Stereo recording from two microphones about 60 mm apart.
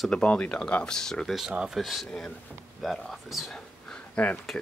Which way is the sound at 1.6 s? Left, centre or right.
Centre.